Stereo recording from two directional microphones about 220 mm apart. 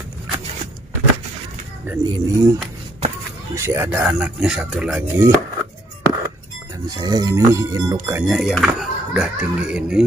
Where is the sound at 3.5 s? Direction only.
10° right (ahead or behind).